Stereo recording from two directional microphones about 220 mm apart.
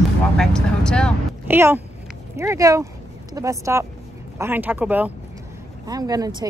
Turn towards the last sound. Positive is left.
turn(degrees=-20)  # may be behind; listen again after turning